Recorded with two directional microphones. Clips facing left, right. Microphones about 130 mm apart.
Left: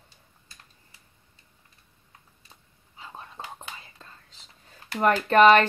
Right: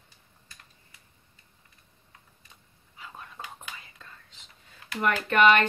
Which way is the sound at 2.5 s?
30° left (ahead or behind).